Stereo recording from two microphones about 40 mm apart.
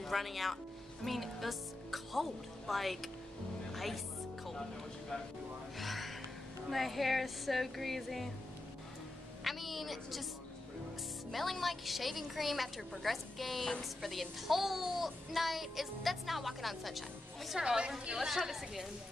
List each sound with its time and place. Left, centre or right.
0.0 s a child's voice: centre
5.8 s music: centre
6.7 s a child's voice: centre
9.4 s a woman's voice: centre
11.3 s a child's voice: centre
14.5 s a child's voice: centre
17.6 s a woman's voice: centre
18.1 s a woman's voice: centre